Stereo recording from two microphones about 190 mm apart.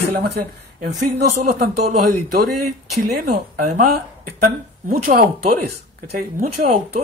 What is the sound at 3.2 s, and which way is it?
Speech, 40° right (ahead or behind).